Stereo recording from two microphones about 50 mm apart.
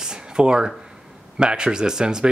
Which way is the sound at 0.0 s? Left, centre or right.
Centre.